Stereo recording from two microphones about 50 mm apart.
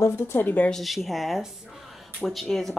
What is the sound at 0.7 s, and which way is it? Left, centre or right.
Speech, centre.